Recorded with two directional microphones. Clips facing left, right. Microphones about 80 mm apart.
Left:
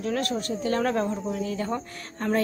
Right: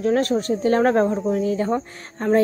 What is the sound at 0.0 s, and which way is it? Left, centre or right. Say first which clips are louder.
Speech: right 8 dB; right.